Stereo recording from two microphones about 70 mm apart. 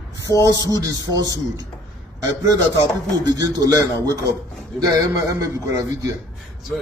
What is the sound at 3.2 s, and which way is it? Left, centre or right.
Speech, right.